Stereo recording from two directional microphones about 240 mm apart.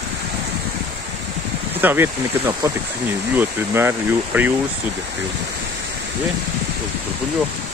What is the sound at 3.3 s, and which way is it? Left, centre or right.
Speech, centre.